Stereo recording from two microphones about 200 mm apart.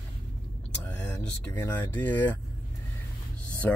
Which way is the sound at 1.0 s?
10° left (ahead or behind).